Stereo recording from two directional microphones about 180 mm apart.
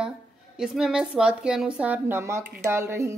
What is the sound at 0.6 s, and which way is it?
A woman's voice, 5° right (ahead or behind).